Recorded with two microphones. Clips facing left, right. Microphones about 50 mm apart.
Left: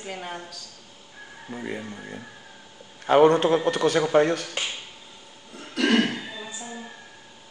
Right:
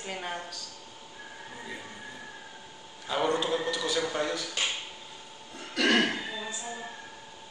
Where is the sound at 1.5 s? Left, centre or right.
Left.